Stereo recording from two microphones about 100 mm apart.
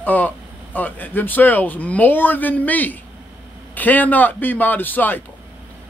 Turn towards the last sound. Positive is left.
turn(degrees=20)  # may be behind; listen again after turning